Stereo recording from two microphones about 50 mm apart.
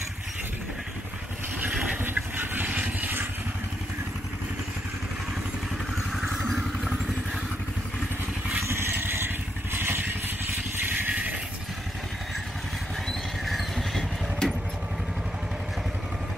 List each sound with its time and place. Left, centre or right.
2.0 s vehicle: right
8.9 s vehicle: right
10.9 s vehicle: right
13.5 s vehicle: centre
14.4 s vehicle: centre